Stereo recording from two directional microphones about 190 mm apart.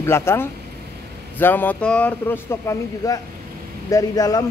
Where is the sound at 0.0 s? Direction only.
15° left (ahead or behind).